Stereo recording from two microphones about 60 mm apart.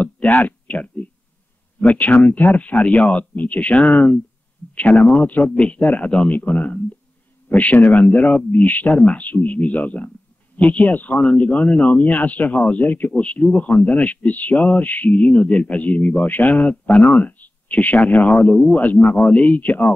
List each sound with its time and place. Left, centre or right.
0.4 s speech: left
2.0 s speech: left
5.4 s a man's voice: centre
5.7 s speech: left
8.5 s speech: left
8.8 s speech: centre
9.1 s speech: left
11.1 s speech: centre
14.0 s speech: left
18.3 s speech: centre
19.5 s speech: left